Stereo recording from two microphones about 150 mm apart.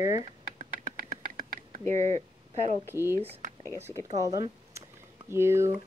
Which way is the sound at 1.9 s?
50° right (ahead or behind).